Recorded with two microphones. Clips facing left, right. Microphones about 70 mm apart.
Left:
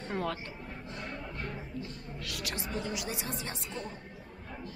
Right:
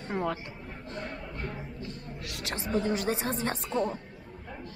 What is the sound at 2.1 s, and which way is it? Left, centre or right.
A woman's voice, right.